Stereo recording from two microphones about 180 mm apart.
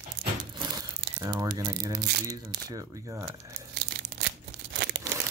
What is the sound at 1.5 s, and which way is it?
Speech, 20° right (ahead or behind).